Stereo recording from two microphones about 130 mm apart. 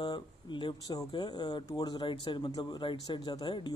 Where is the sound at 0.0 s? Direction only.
35° left (ahead or behind).